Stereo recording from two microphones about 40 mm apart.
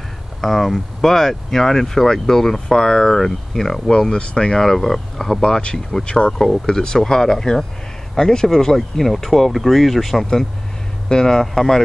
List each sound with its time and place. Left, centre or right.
0.4 s speech: centre
3.9 s speech: left
4.6 s speech: centre
5.4 s speech: left
6.3 s speech: centre
11.1 s speech: centre